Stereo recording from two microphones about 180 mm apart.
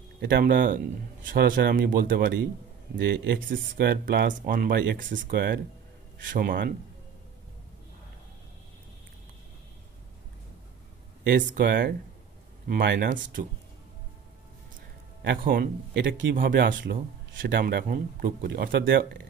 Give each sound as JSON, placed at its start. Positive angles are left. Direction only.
{"t": 0.2, "sound": "speech", "side_deg": -55}
{"t": 3.3, "sound": "speech", "side_deg": -50}
{"t": 6.2, "sound": "speech", "side_deg": -50}
{"t": 11.2, "sound": "speech", "side_deg": -70}
{"t": 13.1, "sound": "speech", "side_deg": -45}
{"t": 15.2, "sound": "speech", "side_deg": -55}
{"t": 15.9, "sound": "speech", "side_deg": -90}
{"t": 17.5, "sound": "speech", "side_deg": -65}